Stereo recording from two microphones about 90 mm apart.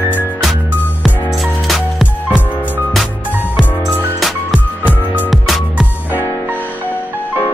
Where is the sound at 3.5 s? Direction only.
Centre (ahead or behind).